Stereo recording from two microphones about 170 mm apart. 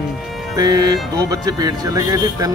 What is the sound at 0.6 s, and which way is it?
Speech, 20° right (ahead or behind).